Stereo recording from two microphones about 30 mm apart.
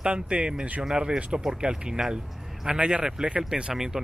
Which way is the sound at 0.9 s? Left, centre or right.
Right.